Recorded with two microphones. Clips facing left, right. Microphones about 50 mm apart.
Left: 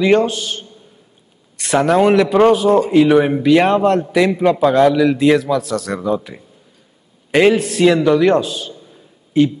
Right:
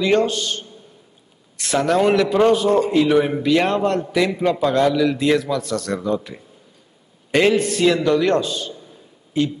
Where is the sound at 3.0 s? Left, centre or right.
Centre.